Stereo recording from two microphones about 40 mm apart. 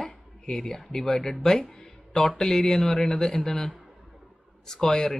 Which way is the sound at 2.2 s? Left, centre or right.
Centre.